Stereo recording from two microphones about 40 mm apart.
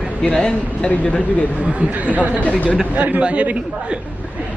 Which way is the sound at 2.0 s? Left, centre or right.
Right.